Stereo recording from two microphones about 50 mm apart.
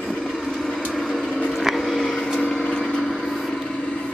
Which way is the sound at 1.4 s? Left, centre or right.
Centre.